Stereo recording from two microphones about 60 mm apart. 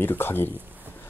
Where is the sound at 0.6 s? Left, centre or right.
Right.